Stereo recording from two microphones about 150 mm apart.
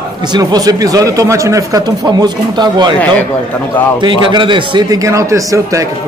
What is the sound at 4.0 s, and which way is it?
A man's voice, 30° right (ahead or behind).